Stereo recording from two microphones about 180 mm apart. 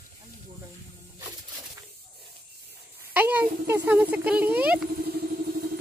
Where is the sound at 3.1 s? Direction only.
10° right (ahead or behind).